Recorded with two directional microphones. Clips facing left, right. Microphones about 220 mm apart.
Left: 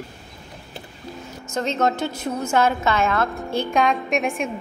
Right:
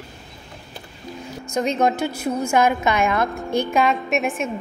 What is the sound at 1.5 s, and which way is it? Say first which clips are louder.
A woman's voice: right 2 dB; 10° right (ahead or behind).